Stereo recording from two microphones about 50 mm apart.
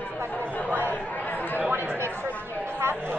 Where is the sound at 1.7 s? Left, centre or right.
Right.